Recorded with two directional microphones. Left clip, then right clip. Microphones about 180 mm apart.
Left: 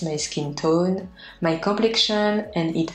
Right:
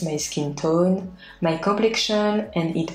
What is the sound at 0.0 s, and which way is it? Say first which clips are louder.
Speech: right 1 dB; 20° left (ahead or behind).